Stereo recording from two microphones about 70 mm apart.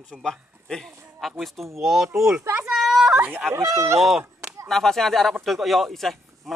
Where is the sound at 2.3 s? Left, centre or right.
Right.